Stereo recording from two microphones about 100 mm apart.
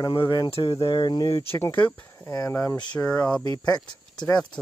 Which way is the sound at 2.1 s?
35° left (ahead or behind).